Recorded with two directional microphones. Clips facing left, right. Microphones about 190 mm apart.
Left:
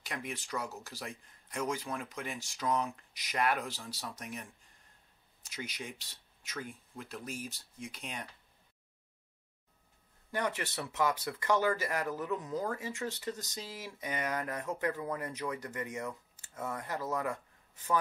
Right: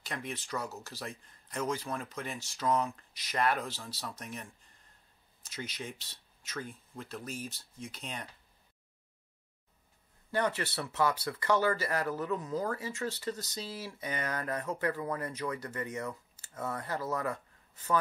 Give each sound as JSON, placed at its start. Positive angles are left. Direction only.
{"t": 0.0, "sound": "speech", "side_deg": 10}
{"t": 10.3, "sound": "speech", "side_deg": 15}